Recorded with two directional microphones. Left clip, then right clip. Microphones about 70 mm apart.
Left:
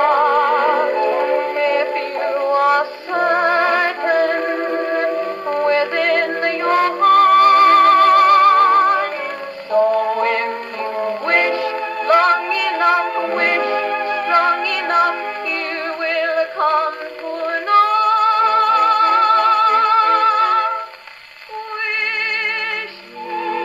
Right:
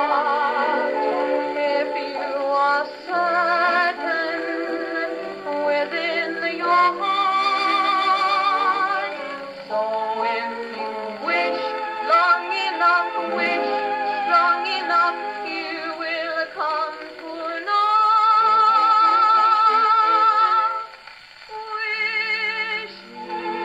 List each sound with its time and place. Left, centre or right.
0.0 s music: right
9.7 s synthetic singing: right
11.0 s music: right
21.8 s music: right